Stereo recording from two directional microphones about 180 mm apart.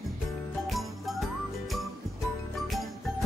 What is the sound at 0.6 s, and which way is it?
Music, centre (ahead or behind).